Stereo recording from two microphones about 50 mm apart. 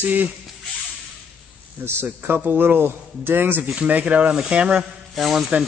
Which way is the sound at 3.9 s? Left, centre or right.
Right.